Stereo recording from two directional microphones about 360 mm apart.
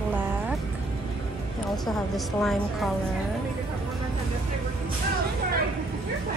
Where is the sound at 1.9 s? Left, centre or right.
Centre.